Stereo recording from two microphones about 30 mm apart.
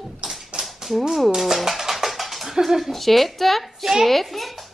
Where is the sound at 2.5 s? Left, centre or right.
Centre.